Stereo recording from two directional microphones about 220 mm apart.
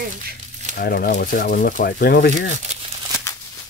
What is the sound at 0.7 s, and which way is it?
Speech, 45° left (ahead or behind).